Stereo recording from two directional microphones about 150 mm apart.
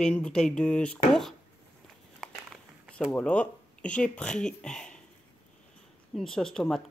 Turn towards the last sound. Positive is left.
turn(degrees=5)  # may be behind; listen again after turning